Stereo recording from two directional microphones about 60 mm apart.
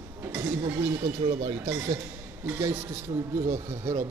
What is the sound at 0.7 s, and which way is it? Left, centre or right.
Speech, right.